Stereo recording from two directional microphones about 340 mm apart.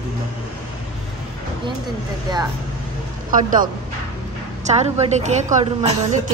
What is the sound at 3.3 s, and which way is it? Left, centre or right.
Speech, right.